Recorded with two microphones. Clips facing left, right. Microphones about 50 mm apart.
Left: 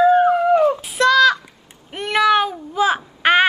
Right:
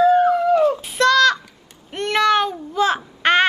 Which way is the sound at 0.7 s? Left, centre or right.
Centre.